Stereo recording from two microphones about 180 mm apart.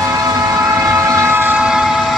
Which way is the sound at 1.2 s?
10° right (ahead or behind).